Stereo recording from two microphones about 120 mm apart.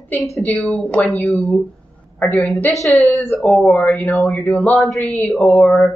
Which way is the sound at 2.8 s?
Centre (ahead or behind).